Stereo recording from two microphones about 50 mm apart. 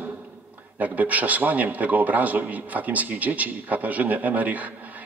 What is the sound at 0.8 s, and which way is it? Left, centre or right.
A man's voice, right.